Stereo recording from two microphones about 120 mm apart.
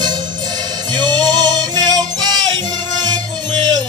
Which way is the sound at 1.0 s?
35° right (ahead or behind).